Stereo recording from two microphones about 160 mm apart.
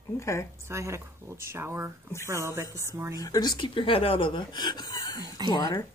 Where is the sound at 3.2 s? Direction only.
25° left (ahead or behind).